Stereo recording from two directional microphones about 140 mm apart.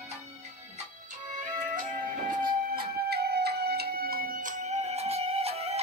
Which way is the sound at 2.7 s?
90° right.